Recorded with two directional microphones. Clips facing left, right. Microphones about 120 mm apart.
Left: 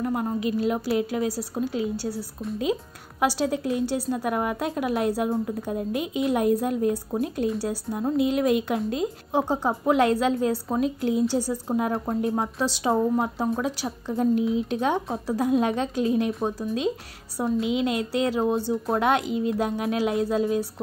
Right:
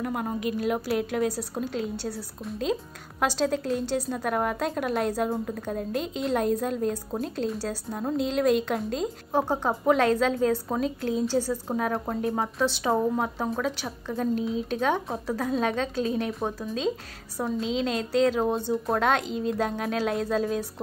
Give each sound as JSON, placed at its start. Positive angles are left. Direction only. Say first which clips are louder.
{"t": 0.0, "sound": "a woman's voice", "louder": "left 3 dB", "side_deg": 0}
{"t": 9.3, "sound": "a woman's voice", "louder": "left 1 dB", "side_deg": 15}
{"t": 11.9, "sound": "a woman's voice", "louder": "left 2 dB", "side_deg": 0}
{"t": 13.6, "sound": "a woman's voice", "louder": "left 2 dB", "side_deg": 15}